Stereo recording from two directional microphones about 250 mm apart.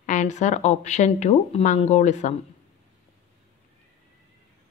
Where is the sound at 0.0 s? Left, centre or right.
Left.